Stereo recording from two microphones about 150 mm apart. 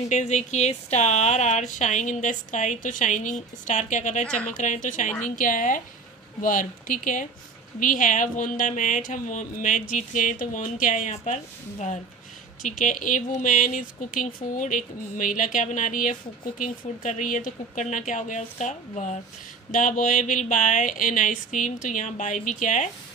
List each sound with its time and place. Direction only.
0.1 s speech: 50° left (ahead or behind)
12.6 s speech: 60° left (ahead or behind)